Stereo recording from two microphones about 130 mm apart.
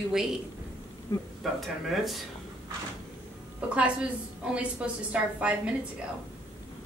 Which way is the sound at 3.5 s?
10° right (ahead or behind).